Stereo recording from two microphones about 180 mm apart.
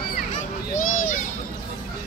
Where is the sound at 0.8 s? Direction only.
45° left (ahead or behind).